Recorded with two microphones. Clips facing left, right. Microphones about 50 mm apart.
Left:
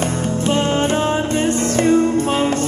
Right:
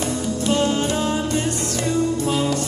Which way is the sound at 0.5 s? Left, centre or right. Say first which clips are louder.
Left 3 dB; left.